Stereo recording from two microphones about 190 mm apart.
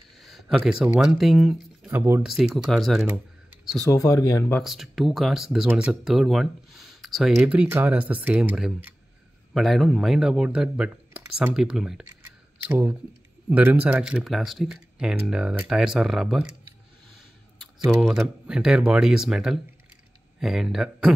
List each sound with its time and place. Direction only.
0.2 s speech: centre (ahead or behind)
2.2 s speech: centre (ahead or behind)
3.9 s speech: 20° left (ahead or behind)
4.6 s speech: centre (ahead or behind)
17.6 s speech: centre (ahead or behind)